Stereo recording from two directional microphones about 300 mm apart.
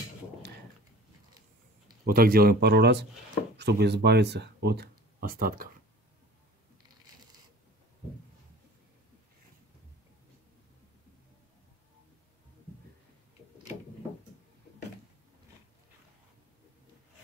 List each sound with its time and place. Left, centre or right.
2.0 s speech: right